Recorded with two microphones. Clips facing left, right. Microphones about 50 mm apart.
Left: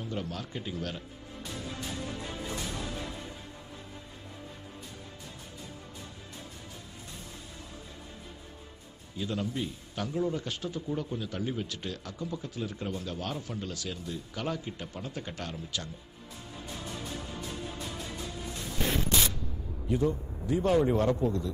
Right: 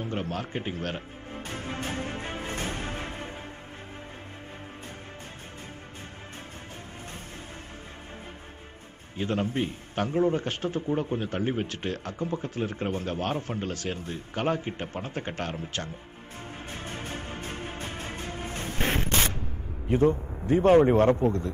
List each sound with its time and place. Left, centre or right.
0.0 s music: right
9.1 s speech: right
16.6 s music: right
19.9 s speech: right